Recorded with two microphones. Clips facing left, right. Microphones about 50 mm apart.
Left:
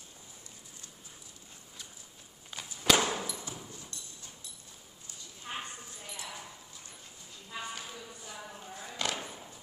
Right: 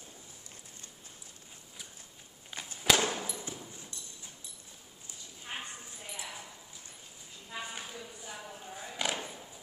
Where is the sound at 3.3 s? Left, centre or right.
Right.